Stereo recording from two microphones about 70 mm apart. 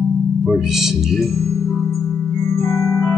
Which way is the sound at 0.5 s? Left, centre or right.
Centre.